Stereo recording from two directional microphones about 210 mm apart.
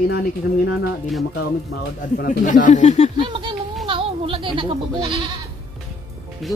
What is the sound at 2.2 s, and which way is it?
Speech, 40° left (ahead or behind).